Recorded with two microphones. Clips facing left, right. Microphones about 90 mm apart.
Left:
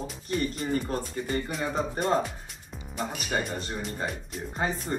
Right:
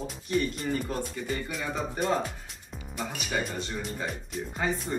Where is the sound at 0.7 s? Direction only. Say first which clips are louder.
Left 2 dB; 40° left (ahead or behind).